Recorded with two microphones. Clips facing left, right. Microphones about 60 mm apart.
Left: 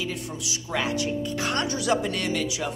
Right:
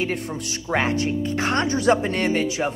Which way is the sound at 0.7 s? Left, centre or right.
Right.